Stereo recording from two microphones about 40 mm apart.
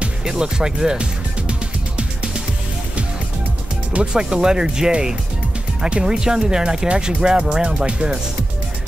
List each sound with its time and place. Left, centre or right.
0.2 s speech: centre
1.5 s music: right
4.0 s speech: centre